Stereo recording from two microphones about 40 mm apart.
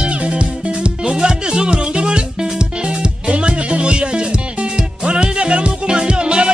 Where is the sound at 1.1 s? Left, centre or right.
Centre.